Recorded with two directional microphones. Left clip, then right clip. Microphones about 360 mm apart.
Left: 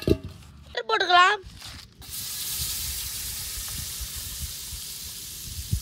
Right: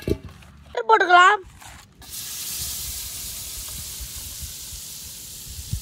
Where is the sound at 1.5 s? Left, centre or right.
Centre.